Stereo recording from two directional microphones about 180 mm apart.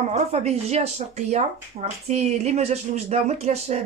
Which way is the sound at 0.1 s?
35° right (ahead or behind).